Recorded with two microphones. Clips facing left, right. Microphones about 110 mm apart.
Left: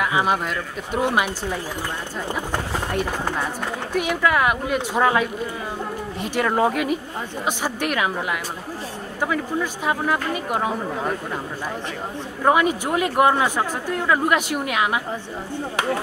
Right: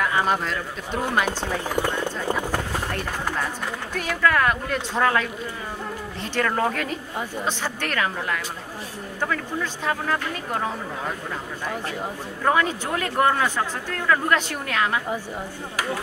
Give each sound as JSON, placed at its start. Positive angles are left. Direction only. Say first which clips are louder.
{"t": 0.0, "sound": "speech", "louder": "left 1 dB", "side_deg": 10}
{"t": 3.9, "sound": "speech", "louder": "left 2 dB", "side_deg": 10}
{"t": 12.4, "sound": "speech", "louder": "left 3 dB", "side_deg": 10}
{"t": 15.7, "sound": "speech", "louder": "left 4 dB", "side_deg": 25}